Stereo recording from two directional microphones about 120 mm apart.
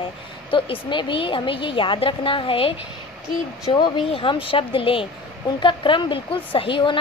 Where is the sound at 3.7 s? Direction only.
40° left (ahead or behind).